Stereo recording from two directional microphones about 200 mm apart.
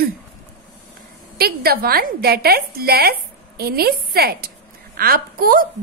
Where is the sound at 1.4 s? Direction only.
50° right (ahead or behind).